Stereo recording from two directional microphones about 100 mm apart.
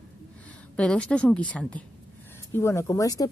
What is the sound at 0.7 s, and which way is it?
A woman's voice, 10° left (ahead or behind).